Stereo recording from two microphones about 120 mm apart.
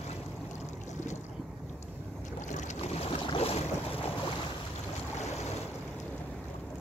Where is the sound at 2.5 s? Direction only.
60° left (ahead or behind).